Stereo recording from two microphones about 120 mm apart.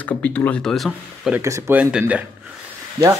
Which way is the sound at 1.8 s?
10° right (ahead or behind).